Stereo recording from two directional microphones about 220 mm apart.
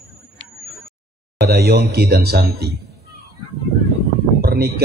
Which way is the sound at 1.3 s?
45° right (ahead or behind).